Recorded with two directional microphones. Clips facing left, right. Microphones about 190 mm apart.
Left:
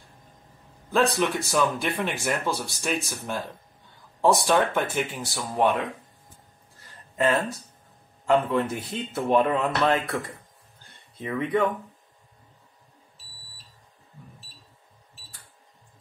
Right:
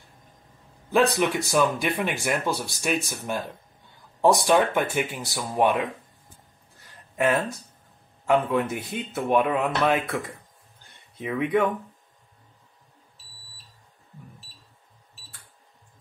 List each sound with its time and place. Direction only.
0.9 s speech: 10° right (ahead or behind)
8.5 s speech: 15° right (ahead or behind)